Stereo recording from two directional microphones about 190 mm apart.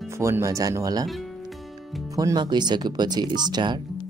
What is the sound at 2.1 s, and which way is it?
Speech, 20° right (ahead or behind).